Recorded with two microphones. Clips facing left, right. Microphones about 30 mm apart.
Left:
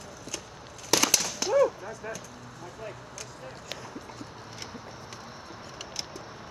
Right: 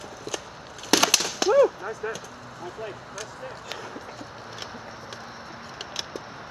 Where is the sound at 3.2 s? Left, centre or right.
Right.